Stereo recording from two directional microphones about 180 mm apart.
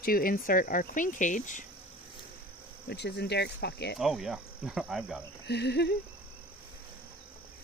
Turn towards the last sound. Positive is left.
turn(degrees=70)  # may be behind; listen again after turning